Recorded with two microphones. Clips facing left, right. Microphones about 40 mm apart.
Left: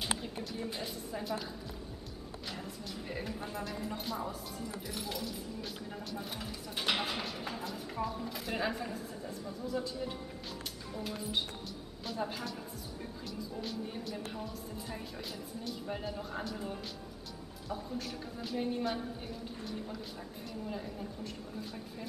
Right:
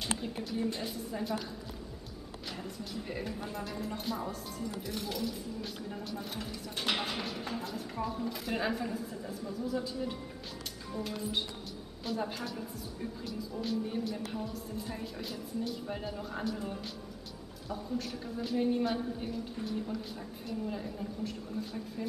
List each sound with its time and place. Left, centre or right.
0.0 s a woman's voice: centre
2.6 s a woman's voice: centre
12.0 s a woman's voice: centre